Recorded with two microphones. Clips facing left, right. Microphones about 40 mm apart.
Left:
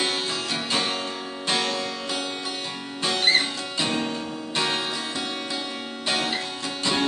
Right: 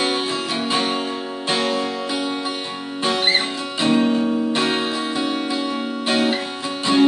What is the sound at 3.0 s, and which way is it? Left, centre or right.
Music, centre.